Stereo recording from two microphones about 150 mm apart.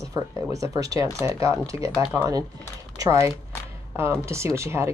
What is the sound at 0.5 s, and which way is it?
Speech, 20° right (ahead or behind).